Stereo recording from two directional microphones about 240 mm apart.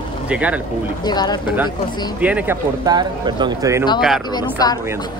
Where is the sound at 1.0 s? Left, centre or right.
Centre.